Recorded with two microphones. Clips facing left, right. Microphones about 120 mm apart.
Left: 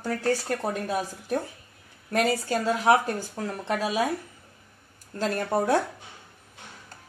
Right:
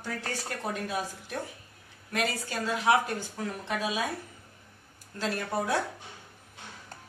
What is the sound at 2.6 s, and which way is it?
Speech, 30° left (ahead or behind).